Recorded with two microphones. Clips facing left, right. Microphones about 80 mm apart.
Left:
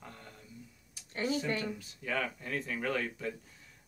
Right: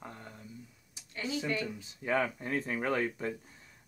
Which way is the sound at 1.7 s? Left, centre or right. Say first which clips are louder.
Right 5 dB; right.